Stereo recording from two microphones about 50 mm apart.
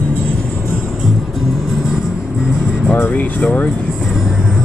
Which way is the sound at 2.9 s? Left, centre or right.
Left.